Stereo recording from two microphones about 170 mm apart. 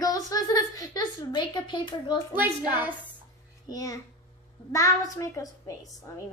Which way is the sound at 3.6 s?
20° left (ahead or behind).